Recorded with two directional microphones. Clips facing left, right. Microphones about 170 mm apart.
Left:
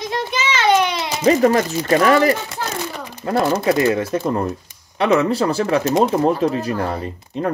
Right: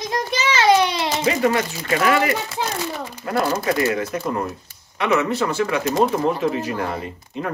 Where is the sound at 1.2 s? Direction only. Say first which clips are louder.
Left 7 dB; 40° left (ahead or behind).